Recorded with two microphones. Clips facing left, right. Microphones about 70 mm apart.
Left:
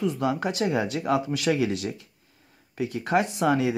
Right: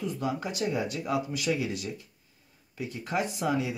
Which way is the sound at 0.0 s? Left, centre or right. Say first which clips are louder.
Left 6 dB; left.